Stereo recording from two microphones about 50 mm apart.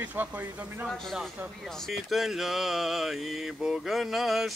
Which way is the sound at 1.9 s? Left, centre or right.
Centre.